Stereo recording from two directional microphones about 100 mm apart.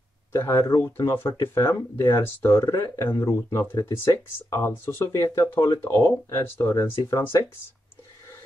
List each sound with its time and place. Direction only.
0.3 s speech: 30° left (ahead or behind)